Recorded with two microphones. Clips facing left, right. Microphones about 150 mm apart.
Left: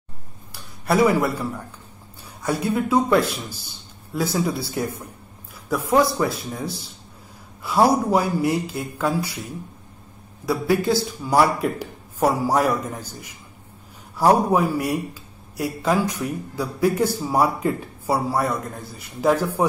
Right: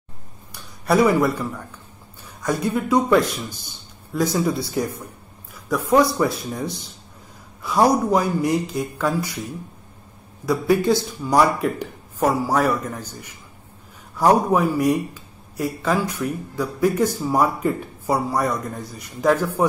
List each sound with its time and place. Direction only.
0.5 s a sound: 5° left (ahead or behind)
2.4 s a man's voice: 5° left (ahead or behind)
10.4 s a man's voice: 5° left (ahead or behind)